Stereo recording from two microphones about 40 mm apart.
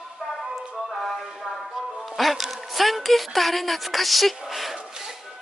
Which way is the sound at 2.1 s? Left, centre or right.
Centre.